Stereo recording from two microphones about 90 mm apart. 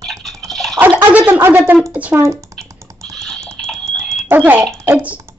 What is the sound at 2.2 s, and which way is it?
Speech, 35° right (ahead or behind).